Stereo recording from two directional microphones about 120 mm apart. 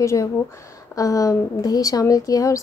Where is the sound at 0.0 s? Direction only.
25° left (ahead or behind).